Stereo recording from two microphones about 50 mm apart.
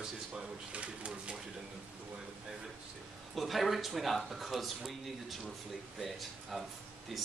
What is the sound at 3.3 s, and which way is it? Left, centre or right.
Speech, centre.